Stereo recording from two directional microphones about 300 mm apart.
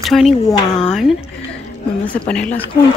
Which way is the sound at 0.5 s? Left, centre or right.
Centre.